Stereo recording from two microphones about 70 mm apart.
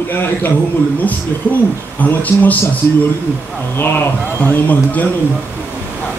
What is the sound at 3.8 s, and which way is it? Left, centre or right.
Speech, left.